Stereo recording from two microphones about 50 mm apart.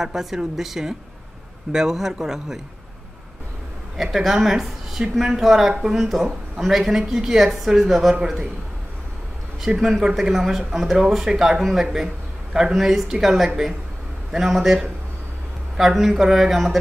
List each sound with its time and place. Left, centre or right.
0.0 s a woman's voice: centre
3.9 s a woman's voice: centre
9.8 s a woman's voice: centre